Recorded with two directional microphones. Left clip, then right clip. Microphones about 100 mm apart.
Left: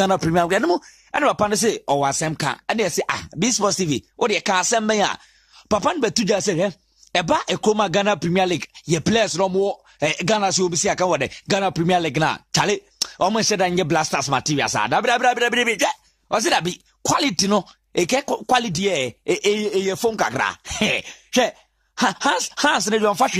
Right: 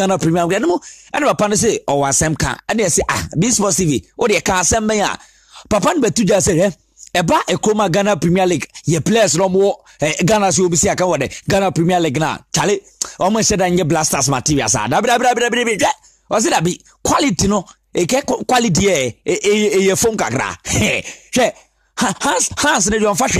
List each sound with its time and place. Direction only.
0.0 s speech: 35° right (ahead or behind)
4.3 s speech: 60° right (ahead or behind)
7.2 s speech: 40° right (ahead or behind)
9.2 s speech: 55° right (ahead or behind)
10.5 s speech: 35° right (ahead or behind)
10.8 s speech: 45° right (ahead or behind)
11.4 s speech: 55° right (ahead or behind)
11.7 s speech: 35° right (ahead or behind)
17.0 s speech: 45° right (ahead or behind)